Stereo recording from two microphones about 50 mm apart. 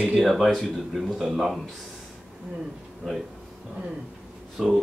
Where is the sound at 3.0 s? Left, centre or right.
Centre.